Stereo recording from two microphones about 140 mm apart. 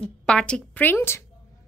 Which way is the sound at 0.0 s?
10° left (ahead or behind).